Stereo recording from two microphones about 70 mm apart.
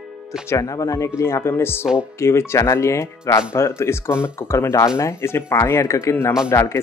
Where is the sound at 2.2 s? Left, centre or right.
Left.